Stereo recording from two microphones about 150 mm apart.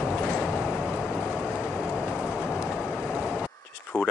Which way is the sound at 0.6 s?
5° right (ahead or behind).